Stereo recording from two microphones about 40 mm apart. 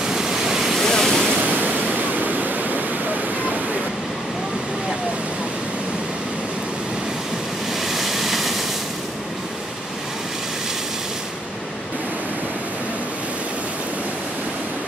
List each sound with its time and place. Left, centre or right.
0.0 s waterfall: centre
0.7 s waves: centre
1.4 s waves: right
7.9 s vehicle: centre